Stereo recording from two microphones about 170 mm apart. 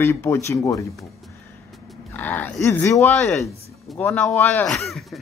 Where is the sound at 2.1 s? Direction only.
10° left (ahead or behind).